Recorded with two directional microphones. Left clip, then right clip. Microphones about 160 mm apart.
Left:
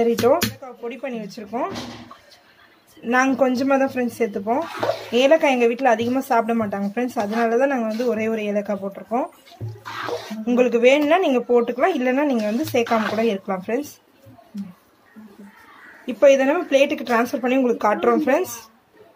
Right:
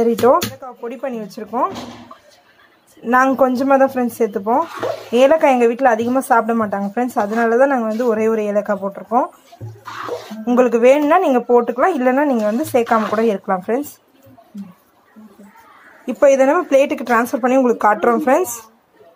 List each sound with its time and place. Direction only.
0.2 s a woman's voice: 20° right (ahead or behind)
3.2 s a woman's voice: 20° right (ahead or behind)
10.4 s a woman's voice: 20° right (ahead or behind)
16.1 s speech: 15° right (ahead or behind)